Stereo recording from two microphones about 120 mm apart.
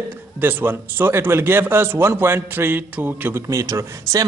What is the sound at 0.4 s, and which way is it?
Speech, 15° right (ahead or behind).